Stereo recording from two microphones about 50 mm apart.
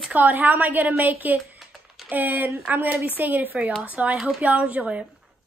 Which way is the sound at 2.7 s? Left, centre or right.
Right.